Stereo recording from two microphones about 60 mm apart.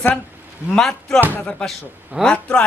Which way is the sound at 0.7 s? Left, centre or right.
Centre.